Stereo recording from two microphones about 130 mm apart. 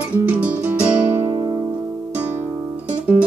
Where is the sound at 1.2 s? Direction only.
35° right (ahead or behind).